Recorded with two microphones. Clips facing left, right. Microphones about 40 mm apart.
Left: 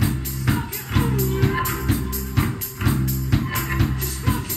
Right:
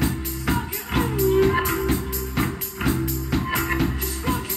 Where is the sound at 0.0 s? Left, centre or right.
Centre.